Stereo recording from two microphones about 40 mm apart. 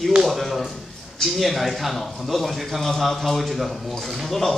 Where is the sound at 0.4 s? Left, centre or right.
Centre.